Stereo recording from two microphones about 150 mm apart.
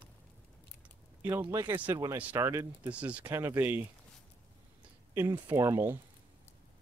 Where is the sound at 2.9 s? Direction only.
10° right (ahead or behind).